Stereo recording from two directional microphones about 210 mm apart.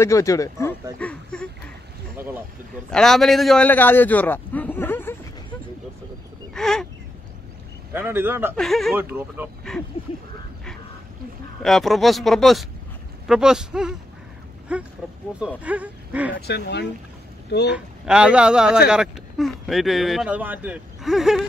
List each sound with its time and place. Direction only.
0.0 s speech: 15° left (ahead or behind)
0.9 s a sound: 5° left (ahead or behind)
2.1 s a sound: 10° right (ahead or behind)
2.9 s a man's voice: centre (ahead or behind)
6.5 s a sound: centre (ahead or behind)
7.9 s speech: 10° right (ahead or behind)
8.5 s speech: centre (ahead or behind)
11.6 s speech: centre (ahead or behind)
16.3 s speech: 50° left (ahead or behind)
17.7 s speech: 5° right (ahead or behind)